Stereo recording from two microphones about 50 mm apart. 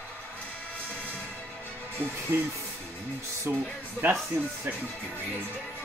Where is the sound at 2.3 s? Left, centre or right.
Right.